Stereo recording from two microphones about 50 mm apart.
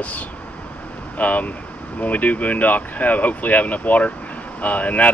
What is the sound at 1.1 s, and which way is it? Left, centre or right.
Speech, left.